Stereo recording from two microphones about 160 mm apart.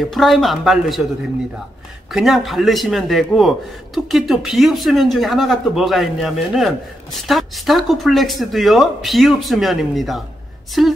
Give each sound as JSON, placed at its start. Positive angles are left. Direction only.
{"t": 0.0, "sound": "a man's voice", "side_deg": 0}
{"t": 2.0, "sound": "a man's voice", "side_deg": 0}